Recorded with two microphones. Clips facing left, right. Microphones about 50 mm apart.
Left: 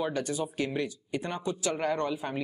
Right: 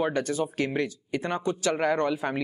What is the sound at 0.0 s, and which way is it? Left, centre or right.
Speech, right.